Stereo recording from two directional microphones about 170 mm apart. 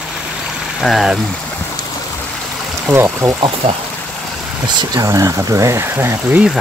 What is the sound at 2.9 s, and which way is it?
Speech, 15° right (ahead or behind).